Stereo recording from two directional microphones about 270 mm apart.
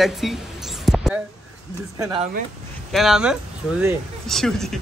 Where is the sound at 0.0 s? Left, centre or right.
Centre.